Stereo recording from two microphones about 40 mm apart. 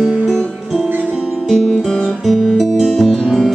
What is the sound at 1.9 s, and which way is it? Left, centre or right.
Music, centre.